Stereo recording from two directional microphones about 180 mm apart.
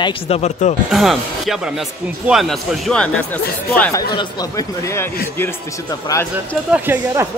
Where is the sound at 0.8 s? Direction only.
Centre (ahead or behind).